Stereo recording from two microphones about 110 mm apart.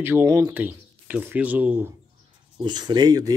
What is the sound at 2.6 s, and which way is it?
Speech, 40° right (ahead or behind).